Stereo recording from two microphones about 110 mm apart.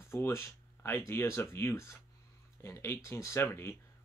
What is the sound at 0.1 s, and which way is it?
Speech, 25° left (ahead or behind).